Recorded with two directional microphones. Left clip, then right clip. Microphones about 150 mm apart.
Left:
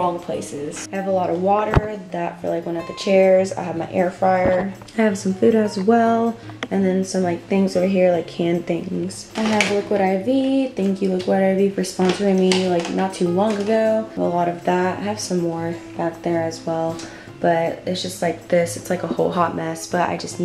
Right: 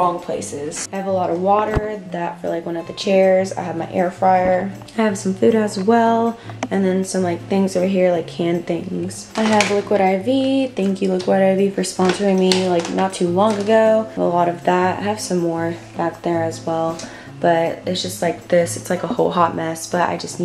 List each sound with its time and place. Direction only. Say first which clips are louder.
0.0 s speech: right 3 dB; 15° right (ahead or behind)